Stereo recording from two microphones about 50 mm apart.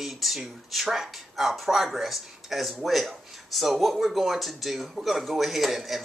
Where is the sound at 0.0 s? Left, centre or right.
Centre.